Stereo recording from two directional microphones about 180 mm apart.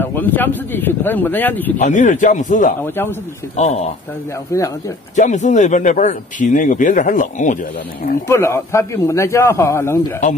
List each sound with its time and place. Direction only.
0.0 s speech: 10° left (ahead or behind)
1.8 s speech: 45° left (ahead or behind)
2.8 s speech: 10° left (ahead or behind)
3.5 s speech: 40° left (ahead or behind)
4.5 s speech: 15° left (ahead or behind)
5.1 s speech: 45° left (ahead or behind)
8.3 s speech: 15° left (ahead or behind)